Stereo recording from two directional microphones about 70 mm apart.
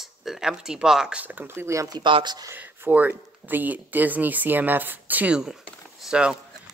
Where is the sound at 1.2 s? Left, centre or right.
Right.